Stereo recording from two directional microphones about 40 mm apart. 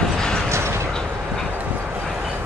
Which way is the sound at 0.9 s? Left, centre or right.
Centre.